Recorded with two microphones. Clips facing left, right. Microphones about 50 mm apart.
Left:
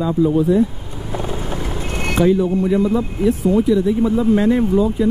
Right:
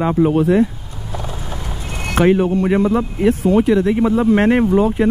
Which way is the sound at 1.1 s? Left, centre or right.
Centre.